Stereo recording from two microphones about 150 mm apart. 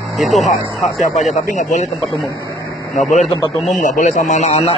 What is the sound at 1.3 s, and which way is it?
Speech, 50° left (ahead or behind).